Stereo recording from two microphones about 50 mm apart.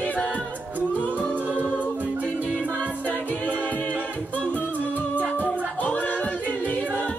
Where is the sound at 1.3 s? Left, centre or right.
Right.